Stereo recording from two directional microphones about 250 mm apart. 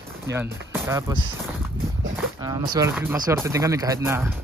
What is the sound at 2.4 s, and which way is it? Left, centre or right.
Speech, centre.